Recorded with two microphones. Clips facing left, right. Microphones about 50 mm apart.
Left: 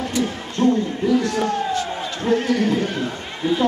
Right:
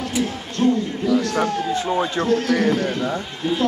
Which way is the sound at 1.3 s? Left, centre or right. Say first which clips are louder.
Even; right.